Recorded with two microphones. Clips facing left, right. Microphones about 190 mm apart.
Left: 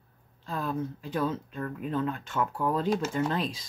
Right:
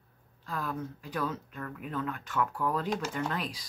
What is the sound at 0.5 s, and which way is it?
Speech, 25° left (ahead or behind).